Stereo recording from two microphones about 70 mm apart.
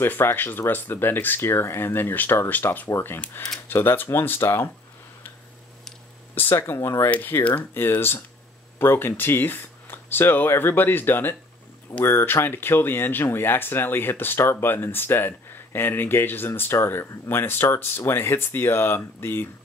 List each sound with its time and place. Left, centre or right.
0.0 s speech: left
6.5 s speech: left
7.1 s speech: left